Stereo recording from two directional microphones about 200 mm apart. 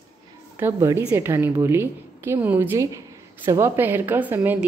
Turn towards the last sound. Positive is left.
turn(degrees=-10)  # may be behind; listen again after turning